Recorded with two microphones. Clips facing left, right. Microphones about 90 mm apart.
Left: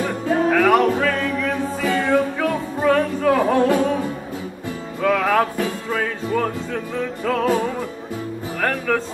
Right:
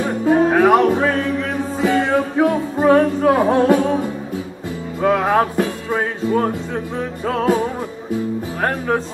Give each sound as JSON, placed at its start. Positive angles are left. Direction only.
{"t": 0.0, "sound": "music", "side_deg": -25}
{"t": 5.0, "sound": "music", "side_deg": -25}
{"t": 8.5, "sound": "speech", "side_deg": -25}